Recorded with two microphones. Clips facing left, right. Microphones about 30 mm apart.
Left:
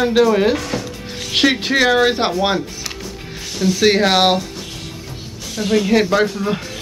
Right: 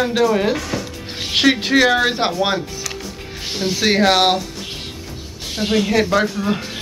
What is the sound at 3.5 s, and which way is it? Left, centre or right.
Music, right.